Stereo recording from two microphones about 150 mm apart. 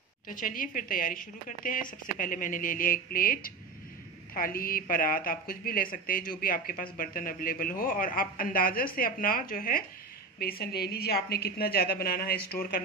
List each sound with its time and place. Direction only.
0.3 s a woman's voice: 70° left (ahead or behind)
10.4 s a woman's voice: 90° left